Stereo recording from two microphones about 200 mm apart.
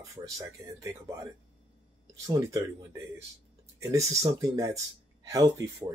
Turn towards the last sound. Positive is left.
turn(degrees=-15)  # may be behind; listen again after turning